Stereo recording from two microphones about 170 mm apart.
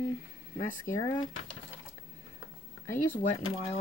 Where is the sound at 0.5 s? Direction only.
50° left (ahead or behind).